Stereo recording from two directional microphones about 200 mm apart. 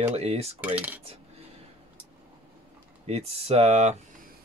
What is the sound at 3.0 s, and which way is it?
Speech, 30° right (ahead or behind).